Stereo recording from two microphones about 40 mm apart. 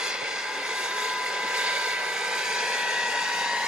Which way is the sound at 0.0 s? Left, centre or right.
Centre.